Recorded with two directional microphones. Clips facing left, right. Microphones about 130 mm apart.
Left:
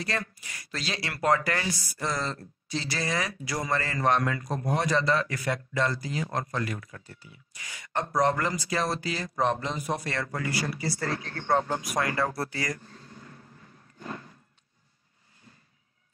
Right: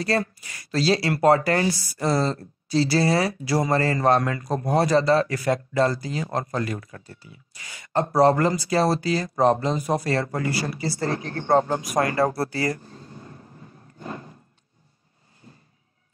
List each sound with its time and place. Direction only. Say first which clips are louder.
0.0 s speech: right 9 dB; 35° right (ahead or behind)